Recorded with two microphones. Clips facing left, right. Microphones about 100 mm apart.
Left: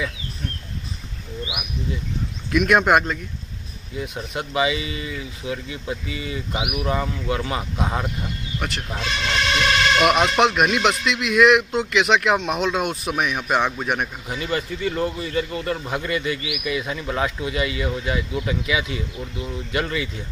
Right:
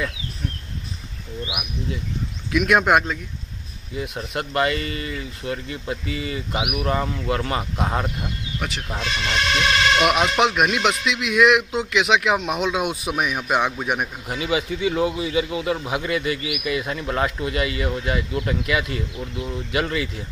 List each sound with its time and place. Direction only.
1.5 s speech: centre (ahead or behind)